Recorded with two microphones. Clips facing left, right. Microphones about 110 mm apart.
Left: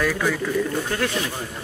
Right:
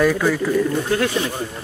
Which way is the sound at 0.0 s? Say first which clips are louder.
Right 5 dB; 15° right (ahead or behind).